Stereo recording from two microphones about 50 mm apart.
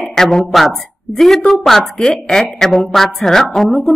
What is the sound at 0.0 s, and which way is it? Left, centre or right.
A woman's voice, centre.